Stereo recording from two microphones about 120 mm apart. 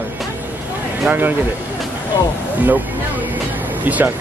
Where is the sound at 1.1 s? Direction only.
15° right (ahead or behind).